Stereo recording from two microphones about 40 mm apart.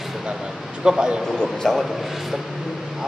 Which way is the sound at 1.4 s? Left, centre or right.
Centre.